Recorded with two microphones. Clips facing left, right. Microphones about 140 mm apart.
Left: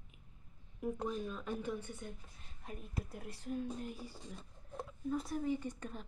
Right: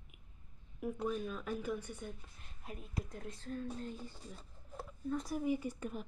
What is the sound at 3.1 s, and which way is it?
A woman's voice, 10° left (ahead or behind).